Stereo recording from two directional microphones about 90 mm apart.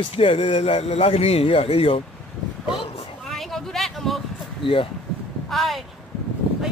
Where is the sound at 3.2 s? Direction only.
Centre (ahead or behind).